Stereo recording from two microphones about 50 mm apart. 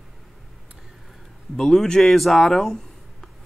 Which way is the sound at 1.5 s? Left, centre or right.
Centre.